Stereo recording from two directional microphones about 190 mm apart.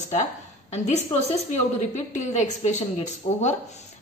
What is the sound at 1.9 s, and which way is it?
A woman's voice, 40° left (ahead or behind).